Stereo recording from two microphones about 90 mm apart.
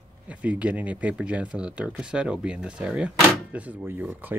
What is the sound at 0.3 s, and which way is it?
Speech, 15° right (ahead or behind).